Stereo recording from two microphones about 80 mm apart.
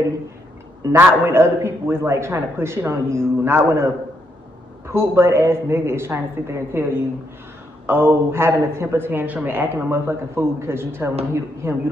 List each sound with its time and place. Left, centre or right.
0.9 s a man's voice: right